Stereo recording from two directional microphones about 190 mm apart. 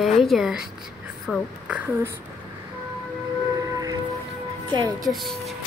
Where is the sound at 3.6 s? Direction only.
20° right (ahead or behind).